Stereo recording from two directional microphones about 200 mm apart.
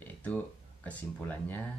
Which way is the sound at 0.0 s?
5° left (ahead or behind).